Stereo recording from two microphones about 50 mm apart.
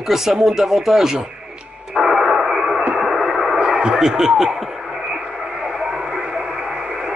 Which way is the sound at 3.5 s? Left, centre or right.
Centre.